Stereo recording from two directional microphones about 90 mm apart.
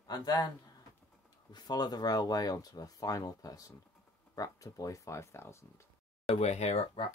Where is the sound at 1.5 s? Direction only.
50° left (ahead or behind); by 5.7 s 30° left (ahead or behind).